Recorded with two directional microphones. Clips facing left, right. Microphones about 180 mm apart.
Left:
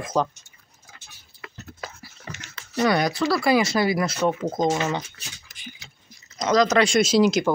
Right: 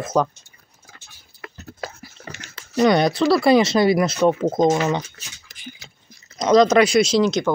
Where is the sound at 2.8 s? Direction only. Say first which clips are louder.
Right 5 dB; 20° right (ahead or behind).